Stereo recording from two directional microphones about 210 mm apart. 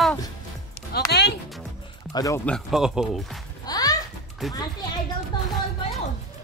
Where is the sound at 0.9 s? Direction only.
50° left (ahead or behind).